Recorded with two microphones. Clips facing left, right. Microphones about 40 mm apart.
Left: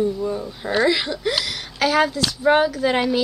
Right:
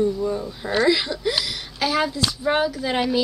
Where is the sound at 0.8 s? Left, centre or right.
Left.